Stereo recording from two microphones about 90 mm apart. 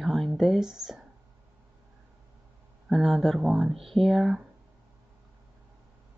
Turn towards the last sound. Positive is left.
turn(degrees=-5)  # may be behind; listen again after turning